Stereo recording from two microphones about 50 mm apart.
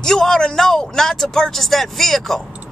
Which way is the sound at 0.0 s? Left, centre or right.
Centre.